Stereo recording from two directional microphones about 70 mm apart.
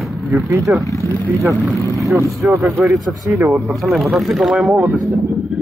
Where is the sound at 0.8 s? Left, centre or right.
Left.